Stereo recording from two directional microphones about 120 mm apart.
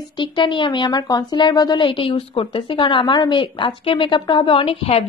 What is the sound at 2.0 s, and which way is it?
Speech, 50° left (ahead or behind).